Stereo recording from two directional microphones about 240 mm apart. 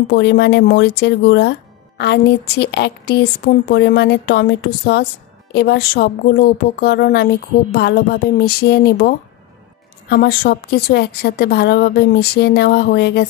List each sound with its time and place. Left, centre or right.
0.1 s a woman's voice: left